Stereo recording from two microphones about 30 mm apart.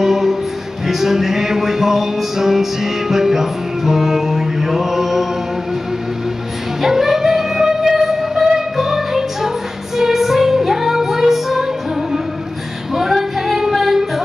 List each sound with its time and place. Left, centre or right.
0.0 s music: centre
6.8 s music: centre
12.9 s a sound: centre